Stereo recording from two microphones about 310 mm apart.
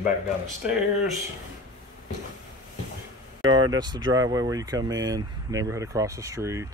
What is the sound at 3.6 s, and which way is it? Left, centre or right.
Speech, centre.